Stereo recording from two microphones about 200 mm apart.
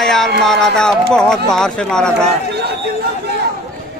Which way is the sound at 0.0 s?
Centre (ahead or behind).